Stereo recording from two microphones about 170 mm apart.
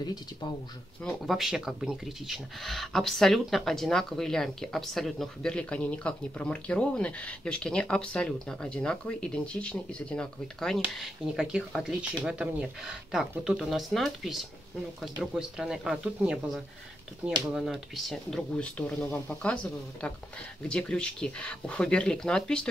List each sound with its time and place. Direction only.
0.0 s speech: 25° left (ahead or behind)
1.0 s speech: centre (ahead or behind)